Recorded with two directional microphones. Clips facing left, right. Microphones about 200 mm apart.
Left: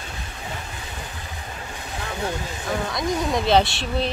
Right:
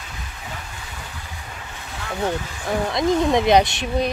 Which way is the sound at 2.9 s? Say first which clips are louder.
Right 7 dB; 25° right (ahead or behind).